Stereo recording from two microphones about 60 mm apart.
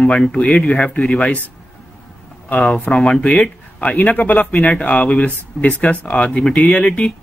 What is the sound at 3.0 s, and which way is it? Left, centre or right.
Speech, centre.